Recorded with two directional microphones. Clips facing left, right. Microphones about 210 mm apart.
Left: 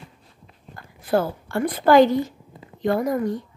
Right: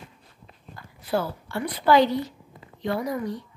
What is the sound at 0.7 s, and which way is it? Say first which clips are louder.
A woman's voice: left 5 dB; 50° left (ahead or behind).